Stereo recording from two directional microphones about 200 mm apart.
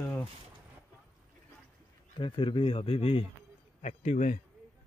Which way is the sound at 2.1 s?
25° left (ahead or behind).